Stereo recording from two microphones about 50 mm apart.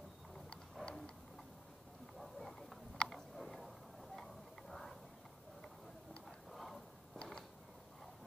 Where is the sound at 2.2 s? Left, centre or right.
Centre.